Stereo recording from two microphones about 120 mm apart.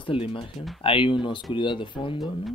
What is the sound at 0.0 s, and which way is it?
Speech, 45° left (ahead or behind).